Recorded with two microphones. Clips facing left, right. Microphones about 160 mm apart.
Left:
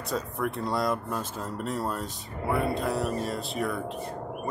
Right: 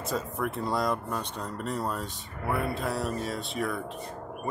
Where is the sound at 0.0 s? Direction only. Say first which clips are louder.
Left 1 dB; centre (ahead or behind).